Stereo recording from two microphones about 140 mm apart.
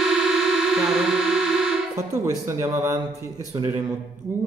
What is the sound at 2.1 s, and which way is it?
A man's voice, 20° right (ahead or behind).